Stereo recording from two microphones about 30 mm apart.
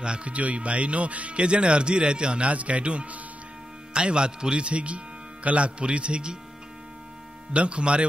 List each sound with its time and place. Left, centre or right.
0.0 s speech: right
0.3 s speech: right
1.4 s speech: right
4.6 s speech: right
7.5 s speech: right